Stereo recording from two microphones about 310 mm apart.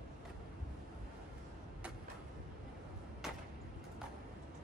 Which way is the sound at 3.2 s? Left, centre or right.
Centre.